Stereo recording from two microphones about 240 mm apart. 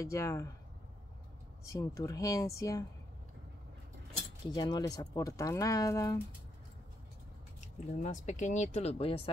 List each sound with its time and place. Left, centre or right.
0.0 s speech: centre
1.6 s speech: centre
4.5 s speech: centre
8.0 s speech: left